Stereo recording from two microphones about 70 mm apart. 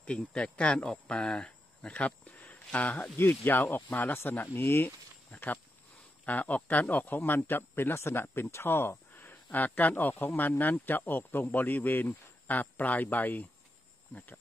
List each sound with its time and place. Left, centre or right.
0.0 s speech: centre